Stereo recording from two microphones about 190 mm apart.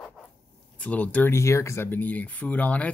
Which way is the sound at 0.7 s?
5° left (ahead or behind).